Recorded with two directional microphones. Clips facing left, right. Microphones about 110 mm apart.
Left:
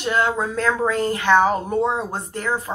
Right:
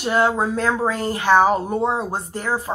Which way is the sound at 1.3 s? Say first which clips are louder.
Right 2 dB; 10° right (ahead or behind).